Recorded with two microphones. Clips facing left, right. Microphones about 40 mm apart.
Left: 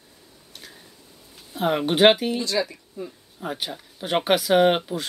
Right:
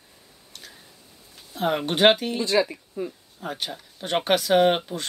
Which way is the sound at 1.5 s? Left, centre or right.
Centre.